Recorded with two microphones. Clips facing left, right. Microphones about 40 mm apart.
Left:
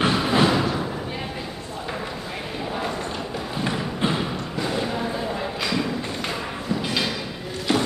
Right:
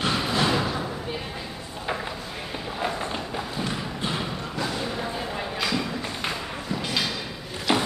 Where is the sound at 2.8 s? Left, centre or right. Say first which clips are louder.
Left 1 dB; centre.